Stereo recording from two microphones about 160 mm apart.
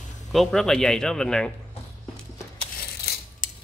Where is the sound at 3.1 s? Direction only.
80° left.